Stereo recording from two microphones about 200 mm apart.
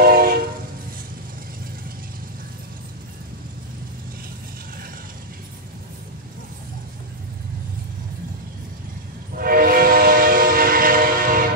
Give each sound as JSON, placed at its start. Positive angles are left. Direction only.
{"t": 0.0, "sound": "train", "side_deg": -50}
{"t": 9.4, "sound": "train", "side_deg": -45}